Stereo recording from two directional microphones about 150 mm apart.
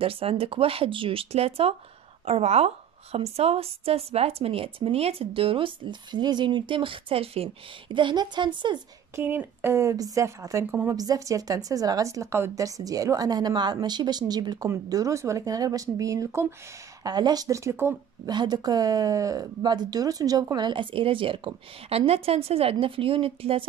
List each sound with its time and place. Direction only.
0.0 s a woman's voice: 40° right (ahead or behind)
9.1 s speech: 15° right (ahead or behind)
18.3 s a woman's voice: 30° right (ahead or behind)